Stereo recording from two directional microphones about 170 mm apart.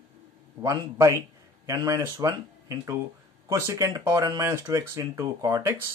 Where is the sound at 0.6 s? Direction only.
20° right (ahead or behind).